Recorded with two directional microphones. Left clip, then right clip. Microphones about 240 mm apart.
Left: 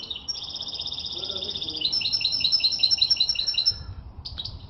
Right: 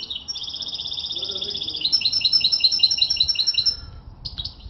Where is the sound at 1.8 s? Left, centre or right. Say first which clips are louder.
Right 5 dB; centre.